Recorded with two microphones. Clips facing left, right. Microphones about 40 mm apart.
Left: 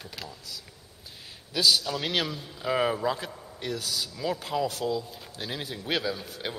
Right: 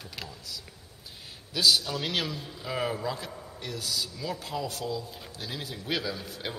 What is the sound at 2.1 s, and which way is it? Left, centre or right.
A man's voice, left.